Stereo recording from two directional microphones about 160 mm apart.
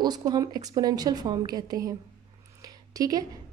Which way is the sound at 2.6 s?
20° right (ahead or behind).